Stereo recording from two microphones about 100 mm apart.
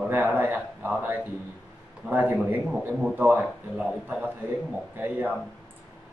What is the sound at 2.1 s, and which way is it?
A man's voice, 20° right (ahead or behind).